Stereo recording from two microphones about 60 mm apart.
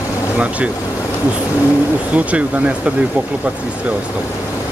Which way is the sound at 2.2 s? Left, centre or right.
Right.